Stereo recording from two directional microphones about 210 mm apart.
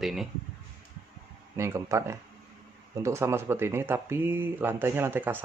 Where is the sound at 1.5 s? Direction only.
15° right (ahead or behind).